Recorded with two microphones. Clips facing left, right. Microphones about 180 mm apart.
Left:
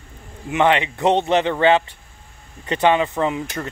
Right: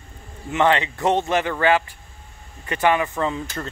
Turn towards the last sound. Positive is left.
turn(degrees=15)  # may be behind; listen again after turning